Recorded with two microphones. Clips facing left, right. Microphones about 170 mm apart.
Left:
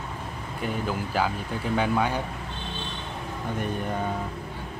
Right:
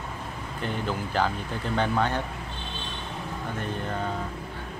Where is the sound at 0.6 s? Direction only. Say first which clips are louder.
Left 1 dB; 5° left (ahead or behind).